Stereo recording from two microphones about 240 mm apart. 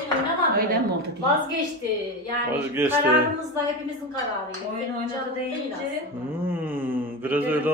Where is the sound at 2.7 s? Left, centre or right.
Centre.